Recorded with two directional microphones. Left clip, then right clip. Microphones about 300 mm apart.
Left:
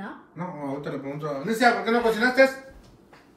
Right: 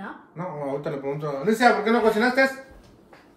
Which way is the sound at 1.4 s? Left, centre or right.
Right.